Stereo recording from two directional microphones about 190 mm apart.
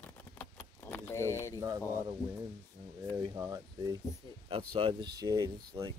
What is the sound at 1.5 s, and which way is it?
Speech, 20° right (ahead or behind).